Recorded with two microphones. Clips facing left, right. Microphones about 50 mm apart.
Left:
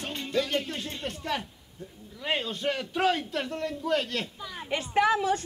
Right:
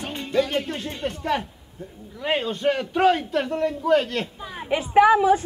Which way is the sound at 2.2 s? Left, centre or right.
Centre.